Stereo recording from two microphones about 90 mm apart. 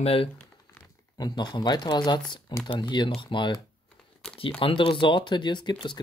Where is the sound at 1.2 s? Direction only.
55° left (ahead or behind).